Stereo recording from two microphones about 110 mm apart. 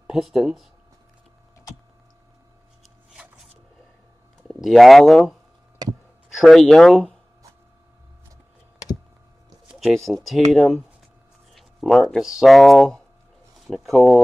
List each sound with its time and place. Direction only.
0.0 s speech: 5° right (ahead or behind)
4.4 s speech: centre (ahead or behind)
5.8 s speech: 35° right (ahead or behind)
6.4 s speech: 5° left (ahead or behind)
9.8 s speech: 5° left (ahead or behind)
11.5 s a sound: centre (ahead or behind)
12.2 s speech: 5° right (ahead or behind)